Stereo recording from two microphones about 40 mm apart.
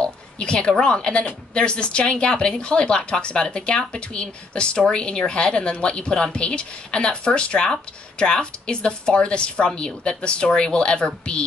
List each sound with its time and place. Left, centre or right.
0.0 s a woman's voice: left